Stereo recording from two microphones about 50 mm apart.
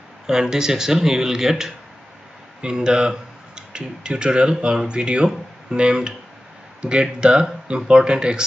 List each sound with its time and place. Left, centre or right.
0.3 s speech: centre